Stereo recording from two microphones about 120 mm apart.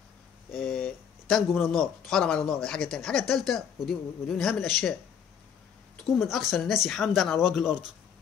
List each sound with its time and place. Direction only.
0.6 s a sound: 5° left (ahead or behind)
1.7 s speech: 5° left (ahead or behind)
5.9 s speech: centre (ahead or behind)